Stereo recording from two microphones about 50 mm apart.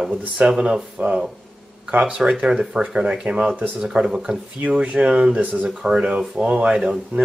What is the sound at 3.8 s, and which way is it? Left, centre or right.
Speech, centre.